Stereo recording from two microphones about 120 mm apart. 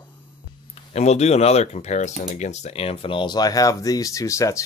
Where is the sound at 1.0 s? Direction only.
65° left (ahead or behind).